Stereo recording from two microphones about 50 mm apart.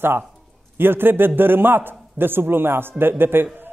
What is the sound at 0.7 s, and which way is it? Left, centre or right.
A man's voice, right.